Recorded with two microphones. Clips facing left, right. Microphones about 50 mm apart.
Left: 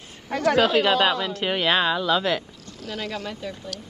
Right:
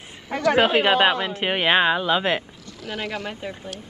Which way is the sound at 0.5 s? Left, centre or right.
Right.